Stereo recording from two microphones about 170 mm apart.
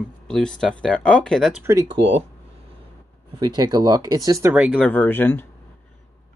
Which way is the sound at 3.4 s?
25° right (ahead or behind).